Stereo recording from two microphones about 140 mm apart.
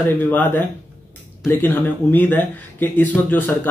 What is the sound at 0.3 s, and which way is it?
Speech, 15° left (ahead or behind).